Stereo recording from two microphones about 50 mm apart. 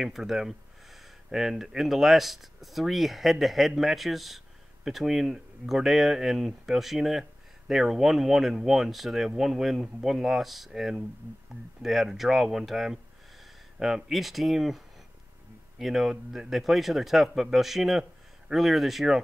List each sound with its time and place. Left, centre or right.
0.0 s speech: centre
15.8 s speech: centre